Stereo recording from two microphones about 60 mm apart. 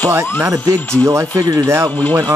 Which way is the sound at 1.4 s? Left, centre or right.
Right.